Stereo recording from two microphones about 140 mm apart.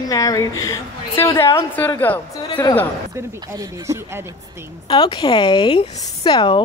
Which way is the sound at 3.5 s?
20° right (ahead or behind).